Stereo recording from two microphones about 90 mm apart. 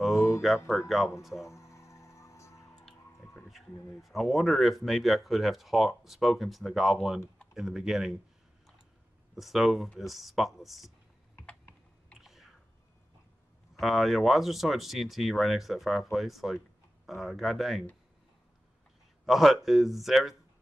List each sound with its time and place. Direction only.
0.0 s a sound: 5° right (ahead or behind)
0.7 s speech: centre (ahead or behind)
1.5 s music: 35° left (ahead or behind)
3.4 s speech: centre (ahead or behind)
9.3 s speech: centre (ahead or behind)
12.2 s a sound: centre (ahead or behind)
13.7 s speech: centre (ahead or behind)
19.2 s speech: centre (ahead or behind)